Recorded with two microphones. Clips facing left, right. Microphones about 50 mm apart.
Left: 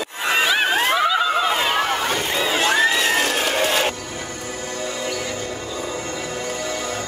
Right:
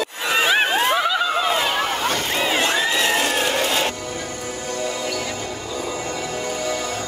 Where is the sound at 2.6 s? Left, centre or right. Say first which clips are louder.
Left 3 dB; left.